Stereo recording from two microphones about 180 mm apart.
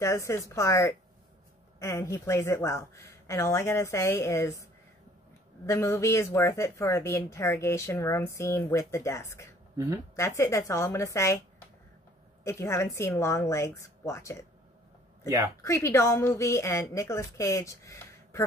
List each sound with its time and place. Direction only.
0.0 s speech: 15° left (ahead or behind)
5.7 s speech: 15° left (ahead or behind)
12.4 s speech: 15° left (ahead or behind)
15.2 s speech: 15° right (ahead or behind)
15.6 s speech: 15° left (ahead or behind)